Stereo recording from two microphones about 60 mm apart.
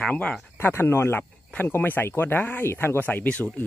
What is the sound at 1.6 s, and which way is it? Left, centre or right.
Speech, left.